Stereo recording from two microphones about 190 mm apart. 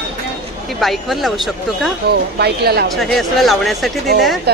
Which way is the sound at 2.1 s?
60° right (ahead or behind).